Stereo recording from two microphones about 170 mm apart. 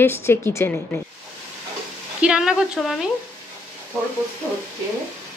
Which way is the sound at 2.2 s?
5° right (ahead or behind).